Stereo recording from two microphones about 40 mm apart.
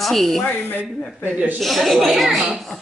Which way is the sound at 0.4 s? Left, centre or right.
Left.